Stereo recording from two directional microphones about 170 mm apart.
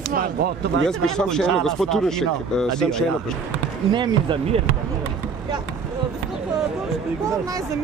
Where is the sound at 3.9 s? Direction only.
25° right (ahead or behind).